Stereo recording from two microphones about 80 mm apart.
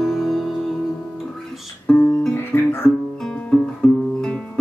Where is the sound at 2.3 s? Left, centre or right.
Left.